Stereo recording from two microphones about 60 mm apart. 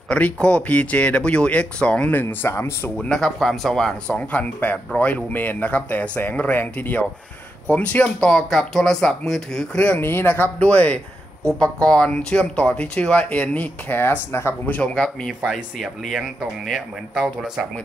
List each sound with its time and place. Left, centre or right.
0.1 s speech: centre
2.4 s speech: left
3.2 s speech: centre
4.1 s speech: left
8.2 s speech: centre
9.9 s speech: left
14.7 s speech: left
15.4 s speech: centre